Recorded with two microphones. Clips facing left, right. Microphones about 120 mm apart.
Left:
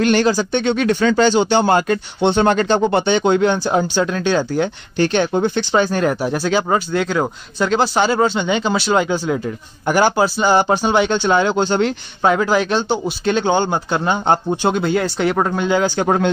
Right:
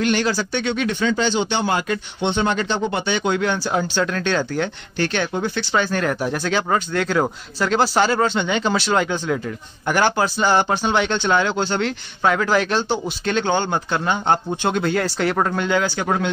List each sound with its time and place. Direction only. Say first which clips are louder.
0.0 s speech: left 5 dB; 35° left (ahead or behind)
0.3 s speech: left 5 dB; 20° left (ahead or behind)
0.7 s speech: left 6 dB; 45° left (ahead or behind)
3.1 s speech: left 5 dB; 30° left (ahead or behind)
12.4 s speech: left 2 dB; 5° left (ahead or behind)
15.6 s speech: left 5 dB; 20° left (ahead or behind)
16.0 s speech: left 5 dB; 40° left (ahead or behind)